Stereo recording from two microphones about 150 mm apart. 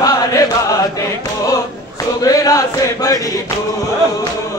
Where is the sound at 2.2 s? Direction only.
25° left (ahead or behind).